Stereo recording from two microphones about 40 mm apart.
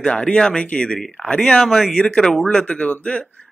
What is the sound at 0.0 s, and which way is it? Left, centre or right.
A man's voice, centre.